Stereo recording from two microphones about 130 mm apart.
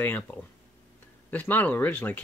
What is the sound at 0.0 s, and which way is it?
Speech, 15° left (ahead or behind).